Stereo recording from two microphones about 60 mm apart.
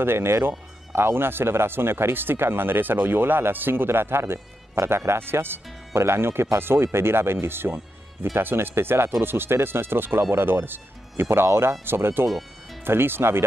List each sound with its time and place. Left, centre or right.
0.0 s speech: right